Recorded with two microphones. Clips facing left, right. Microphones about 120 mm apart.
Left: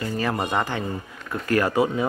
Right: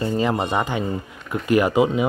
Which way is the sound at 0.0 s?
20° right (ahead or behind).